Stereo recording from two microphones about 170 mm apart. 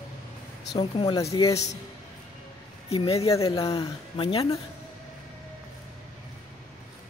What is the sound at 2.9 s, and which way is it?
Speech, 35° left (ahead or behind).